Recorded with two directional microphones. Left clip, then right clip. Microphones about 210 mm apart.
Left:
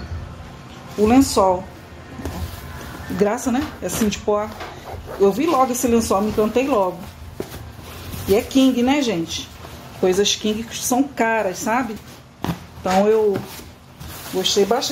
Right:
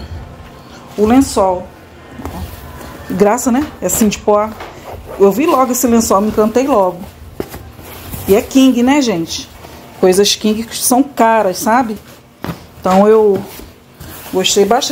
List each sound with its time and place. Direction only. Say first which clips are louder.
1.4 s speech: right 3 dB; 15° right (ahead or behind)
3.2 s a woman's voice: right 8 dB; 35° right (ahead or behind)
8.3 s a woman's voice: right 6 dB; 35° right (ahead or behind)
12.8 s a woman's voice: right 8 dB; 35° right (ahead or behind)